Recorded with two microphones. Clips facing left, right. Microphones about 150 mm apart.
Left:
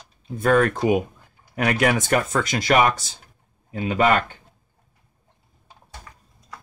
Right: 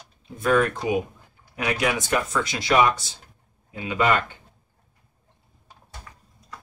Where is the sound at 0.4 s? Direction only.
50° left (ahead or behind).